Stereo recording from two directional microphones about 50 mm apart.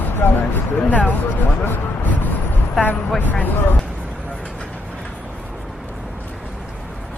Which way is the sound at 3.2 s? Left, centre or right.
Left.